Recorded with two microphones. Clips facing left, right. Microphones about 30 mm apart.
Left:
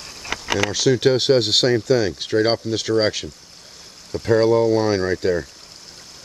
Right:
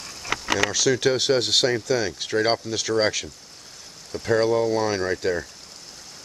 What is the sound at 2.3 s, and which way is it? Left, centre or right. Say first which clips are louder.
Speech: left 3 dB; centre.